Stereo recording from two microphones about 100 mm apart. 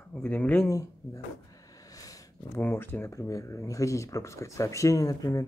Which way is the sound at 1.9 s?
35° left (ahead or behind).